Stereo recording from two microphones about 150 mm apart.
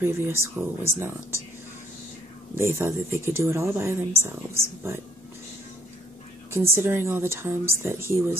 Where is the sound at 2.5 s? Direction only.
15° right (ahead or behind).